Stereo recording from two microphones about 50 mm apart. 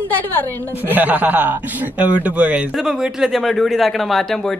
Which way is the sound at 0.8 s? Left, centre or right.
Right.